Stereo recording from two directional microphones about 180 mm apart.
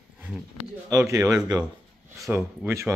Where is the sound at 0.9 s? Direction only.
15° right (ahead or behind).